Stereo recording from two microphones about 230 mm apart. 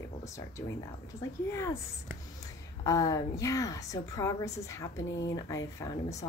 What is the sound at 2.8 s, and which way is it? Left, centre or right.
A woman's voice, centre.